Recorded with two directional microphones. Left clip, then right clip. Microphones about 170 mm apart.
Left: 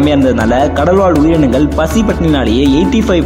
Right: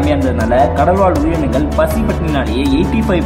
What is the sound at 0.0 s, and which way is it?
Speech, 40° left (ahead or behind).